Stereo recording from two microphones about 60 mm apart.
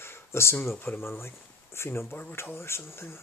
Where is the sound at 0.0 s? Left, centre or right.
Left.